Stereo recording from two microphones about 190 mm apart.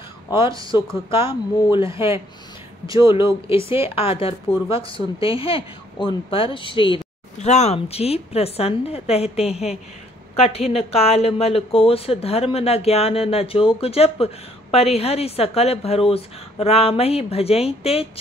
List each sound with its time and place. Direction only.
0.3 s speech: 25° left (ahead or behind)